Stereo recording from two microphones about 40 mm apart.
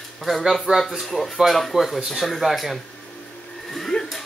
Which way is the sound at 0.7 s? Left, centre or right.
Centre.